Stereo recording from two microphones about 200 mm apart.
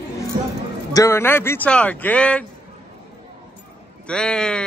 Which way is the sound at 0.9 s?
15° left (ahead or behind).